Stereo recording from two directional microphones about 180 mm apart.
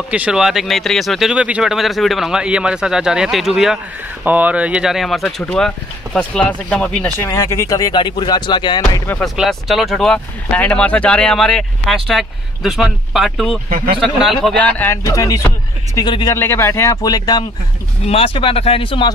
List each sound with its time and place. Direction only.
0.1 s speech: 5° right (ahead or behind); by 9.2 s 15° left (ahead or behind)
9.2 s speech: centre (ahead or behind)
13.7 s speech: 50° right (ahead or behind)
14.4 s speech: 5° left (ahead or behind); by 16.3 s 25° left (ahead or behind)
16.3 s speech: 15° left (ahead or behind); by 19.0 s 30° left (ahead or behind)